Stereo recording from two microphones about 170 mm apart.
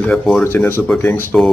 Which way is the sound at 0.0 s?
5° left (ahead or behind).